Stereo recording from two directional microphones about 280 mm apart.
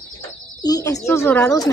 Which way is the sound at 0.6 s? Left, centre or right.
Centre.